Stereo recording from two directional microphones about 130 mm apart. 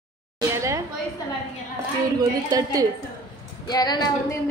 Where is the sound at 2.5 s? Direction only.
30° right (ahead or behind).